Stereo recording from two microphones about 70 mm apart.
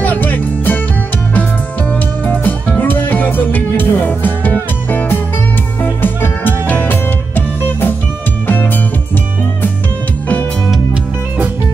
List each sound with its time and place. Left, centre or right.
0.0 s music: left
1.9 s music: left